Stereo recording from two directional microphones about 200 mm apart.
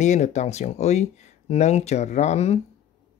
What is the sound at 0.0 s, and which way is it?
Speech, 35° left (ahead or behind).